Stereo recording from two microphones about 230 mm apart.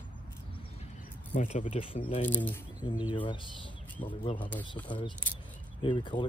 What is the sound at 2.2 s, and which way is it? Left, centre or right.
Speech, centre.